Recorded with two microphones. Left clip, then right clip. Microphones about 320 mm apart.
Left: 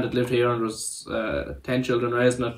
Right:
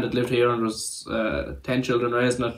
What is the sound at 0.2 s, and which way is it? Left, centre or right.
Speech, centre.